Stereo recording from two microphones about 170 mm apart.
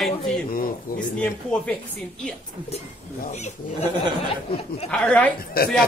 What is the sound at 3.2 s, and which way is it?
Speech, 45° left (ahead or behind).